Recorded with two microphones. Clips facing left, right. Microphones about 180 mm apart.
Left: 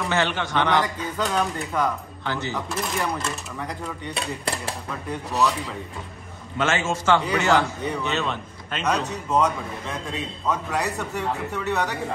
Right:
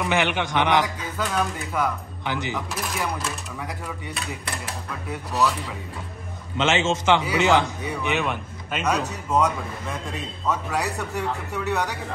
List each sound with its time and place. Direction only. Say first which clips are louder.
0.1 s a man's voice: even; 15° right (ahead or behind)
2.2 s a man's voice: even; 15° right (ahead or behind)
2.7 s speech: left 2 dB; 5° right (ahead or behind)
5.1 s speech: even; centre (ahead or behind)
6.6 s a man's voice: right 2 dB; 20° right (ahead or behind)